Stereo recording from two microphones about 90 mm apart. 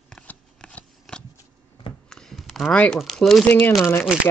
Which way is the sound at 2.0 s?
5° left (ahead or behind).